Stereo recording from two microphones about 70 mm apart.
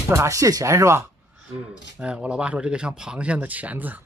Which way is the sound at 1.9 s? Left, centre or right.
Centre.